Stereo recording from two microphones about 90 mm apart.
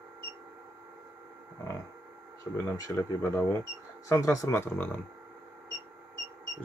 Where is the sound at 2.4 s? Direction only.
40° left (ahead or behind).